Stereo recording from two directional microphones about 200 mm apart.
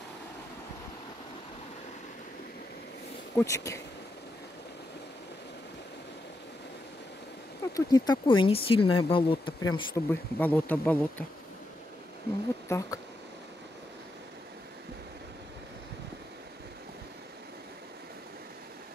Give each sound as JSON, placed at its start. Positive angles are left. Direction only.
{"t": 3.3, "sound": "speech", "side_deg": 15}
{"t": 7.7, "sound": "speech", "side_deg": 20}
{"t": 12.6, "sound": "speech", "side_deg": 15}